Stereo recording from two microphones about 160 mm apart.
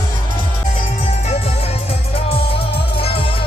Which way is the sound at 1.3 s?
40° left (ahead or behind).